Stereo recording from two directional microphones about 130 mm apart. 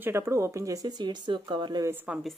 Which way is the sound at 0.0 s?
20° right (ahead or behind).